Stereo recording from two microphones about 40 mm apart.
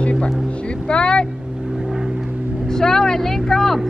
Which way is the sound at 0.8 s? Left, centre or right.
Left.